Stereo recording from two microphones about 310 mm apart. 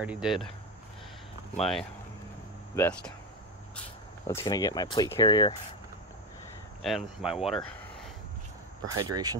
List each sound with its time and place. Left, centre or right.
0.0 s speech: centre
1.6 s speech: centre
4.3 s speech: centre
6.8 s speech: centre
8.8 s speech: centre